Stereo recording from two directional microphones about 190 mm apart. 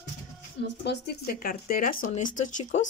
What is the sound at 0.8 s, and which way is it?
Speech, 55° left (ahead or behind).